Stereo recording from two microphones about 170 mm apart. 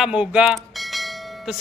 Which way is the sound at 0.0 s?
5° right (ahead or behind).